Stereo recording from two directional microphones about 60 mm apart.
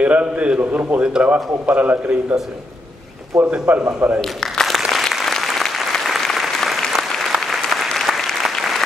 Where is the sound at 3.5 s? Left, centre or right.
Centre.